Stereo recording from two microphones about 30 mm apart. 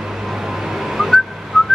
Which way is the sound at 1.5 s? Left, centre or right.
Centre.